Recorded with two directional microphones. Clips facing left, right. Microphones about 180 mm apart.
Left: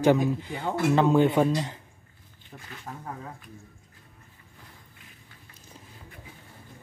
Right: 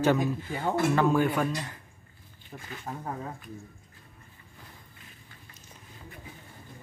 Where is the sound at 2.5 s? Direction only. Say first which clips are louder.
Right 2 dB; 15° right (ahead or behind).